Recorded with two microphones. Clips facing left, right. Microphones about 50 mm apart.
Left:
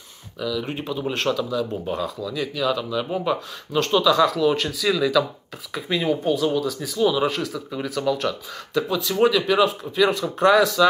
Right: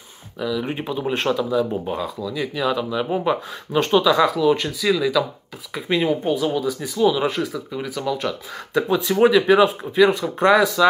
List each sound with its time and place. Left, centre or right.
0.4 s speech: right
4.4 s speech: centre
5.9 s speech: right
8.7 s speech: right